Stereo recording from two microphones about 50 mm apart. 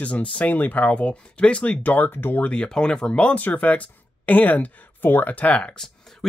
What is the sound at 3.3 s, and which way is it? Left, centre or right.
Speech, left.